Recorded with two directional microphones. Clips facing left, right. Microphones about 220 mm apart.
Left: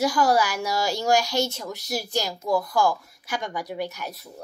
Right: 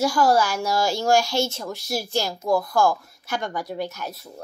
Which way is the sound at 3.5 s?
15° left (ahead or behind).